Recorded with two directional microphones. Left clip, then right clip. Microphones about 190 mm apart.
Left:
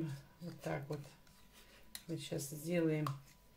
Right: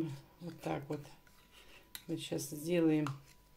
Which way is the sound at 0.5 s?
35° right (ahead or behind).